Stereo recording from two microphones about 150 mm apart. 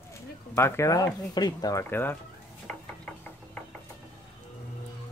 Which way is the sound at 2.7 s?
5° left (ahead or behind).